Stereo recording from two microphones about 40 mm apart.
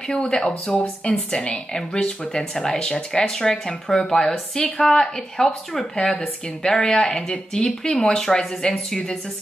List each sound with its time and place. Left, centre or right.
0.1 s speech: left
0.7 s speech: centre
1.0 s a woman's voice: left
1.7 s speech: centre